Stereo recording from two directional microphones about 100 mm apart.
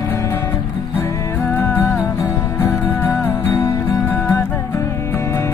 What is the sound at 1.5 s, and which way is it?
Music, 20° left (ahead or behind).